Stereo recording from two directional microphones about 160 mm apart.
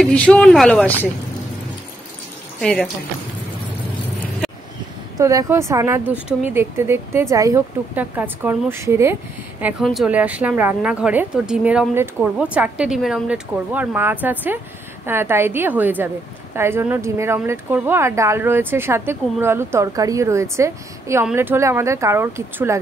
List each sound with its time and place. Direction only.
0.0 s speech: 5° left (ahead or behind)
2.6 s speech: centre (ahead or behind)
5.1 s a woman's voice: 20° right (ahead or behind)